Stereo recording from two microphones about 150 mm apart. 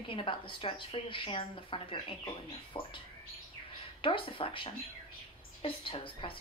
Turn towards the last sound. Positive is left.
turn(degrees=35)  # may be behind; listen again after turning